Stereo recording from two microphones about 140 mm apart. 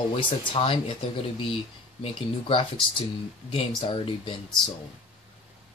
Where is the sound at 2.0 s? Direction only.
40° left (ahead or behind).